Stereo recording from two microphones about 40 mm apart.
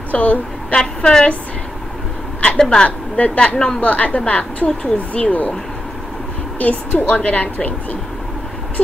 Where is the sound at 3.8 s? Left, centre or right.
Left.